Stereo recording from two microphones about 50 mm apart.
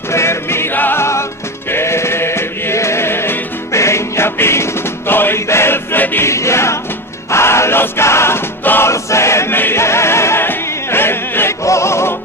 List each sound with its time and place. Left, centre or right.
0.1 s music: left
3.7 s music: left
6.2 s choir: left
7.2 s music: left
8.8 s chant: left
9.5 s music: left
10.4 s choir: left
11.6 s music: left